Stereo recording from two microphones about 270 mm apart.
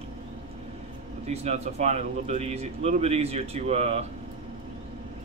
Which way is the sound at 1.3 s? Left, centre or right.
Right.